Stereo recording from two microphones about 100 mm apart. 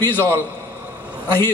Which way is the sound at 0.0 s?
25° left (ahead or behind).